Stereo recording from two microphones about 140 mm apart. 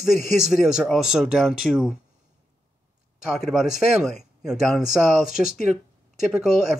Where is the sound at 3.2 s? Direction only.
5° right (ahead or behind).